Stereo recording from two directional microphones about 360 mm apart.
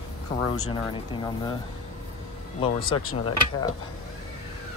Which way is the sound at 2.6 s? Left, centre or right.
Centre.